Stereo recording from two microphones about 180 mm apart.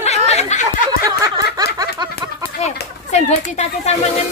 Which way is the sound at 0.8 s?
20° right (ahead or behind).